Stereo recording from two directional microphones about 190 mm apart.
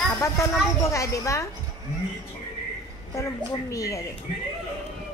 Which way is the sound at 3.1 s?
15° left (ahead or behind).